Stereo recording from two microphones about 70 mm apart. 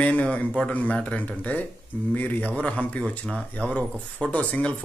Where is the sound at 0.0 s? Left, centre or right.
Centre.